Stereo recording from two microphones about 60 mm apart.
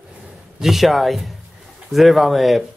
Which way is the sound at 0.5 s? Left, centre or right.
Centre.